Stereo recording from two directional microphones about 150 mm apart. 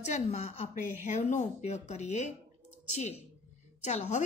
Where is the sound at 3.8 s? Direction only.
50° left (ahead or behind).